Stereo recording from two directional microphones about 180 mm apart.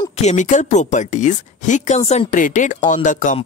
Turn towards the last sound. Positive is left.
turn(degrees=45)  # may be behind; listen again after turning